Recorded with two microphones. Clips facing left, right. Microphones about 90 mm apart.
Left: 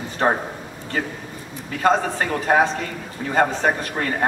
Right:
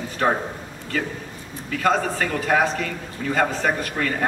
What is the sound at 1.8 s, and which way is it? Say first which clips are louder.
A man's voice: left 2 dB; 30° left (ahead or behind).